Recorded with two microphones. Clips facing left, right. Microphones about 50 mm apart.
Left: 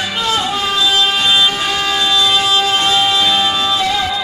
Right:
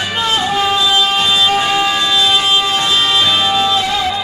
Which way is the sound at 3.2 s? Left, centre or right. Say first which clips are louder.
Even; centre.